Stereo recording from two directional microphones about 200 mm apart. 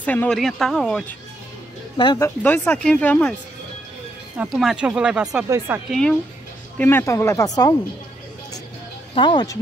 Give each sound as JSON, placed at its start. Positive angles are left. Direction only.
{"t": 0.0, "sound": "speech", "side_deg": 10}
{"t": 2.0, "sound": "speech", "side_deg": 20}
{"t": 4.4, "sound": "speech", "side_deg": 0}
{"t": 9.1, "sound": "speech", "side_deg": 25}